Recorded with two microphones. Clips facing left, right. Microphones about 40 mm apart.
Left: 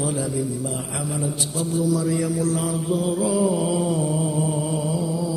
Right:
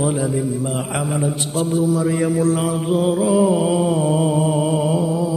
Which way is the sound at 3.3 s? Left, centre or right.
Right.